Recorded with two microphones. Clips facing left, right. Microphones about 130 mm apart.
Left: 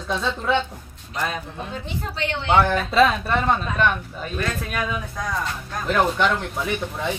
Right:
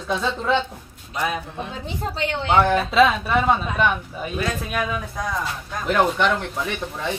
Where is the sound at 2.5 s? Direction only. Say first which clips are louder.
Right 1 dB; 5° right (ahead or behind).